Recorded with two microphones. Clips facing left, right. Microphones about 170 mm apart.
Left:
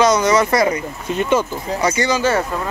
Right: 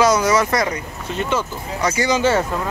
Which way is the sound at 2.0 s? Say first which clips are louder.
Right 3 dB; 20° right (ahead or behind).